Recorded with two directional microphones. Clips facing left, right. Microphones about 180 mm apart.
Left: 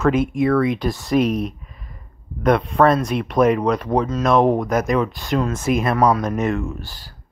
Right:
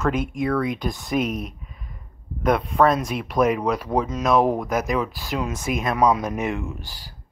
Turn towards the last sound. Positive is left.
turn(degrees=-15)  # may be behind; listen again after turning